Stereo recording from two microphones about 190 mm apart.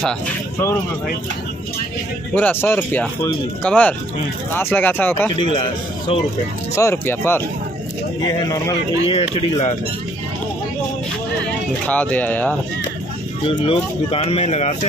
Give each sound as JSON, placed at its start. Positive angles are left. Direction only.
{"t": 2.3, "sound": "speech", "side_deg": 10}
{"t": 5.4, "sound": "a man's voice", "side_deg": 25}
{"t": 11.8, "sound": "speech", "side_deg": 5}
{"t": 13.5, "sound": "speech", "side_deg": 30}